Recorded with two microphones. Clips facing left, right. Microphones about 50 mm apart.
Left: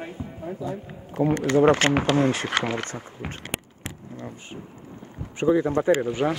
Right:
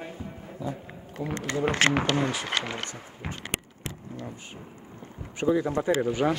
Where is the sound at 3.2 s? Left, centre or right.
Centre.